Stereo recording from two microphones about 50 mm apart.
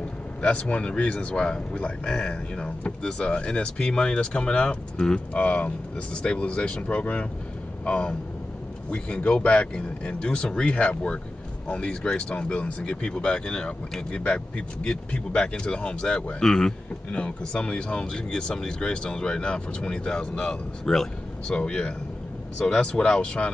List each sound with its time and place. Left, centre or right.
0.4 s speech: left
5.4 s speech: left